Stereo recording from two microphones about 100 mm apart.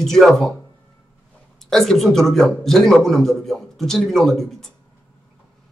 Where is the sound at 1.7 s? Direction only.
5° left (ahead or behind).